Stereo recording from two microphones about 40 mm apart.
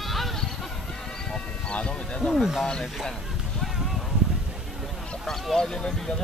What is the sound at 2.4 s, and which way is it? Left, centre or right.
Speech, centre.